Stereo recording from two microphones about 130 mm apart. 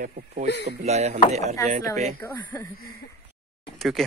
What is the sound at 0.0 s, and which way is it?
Speech, 70° right (ahead or behind).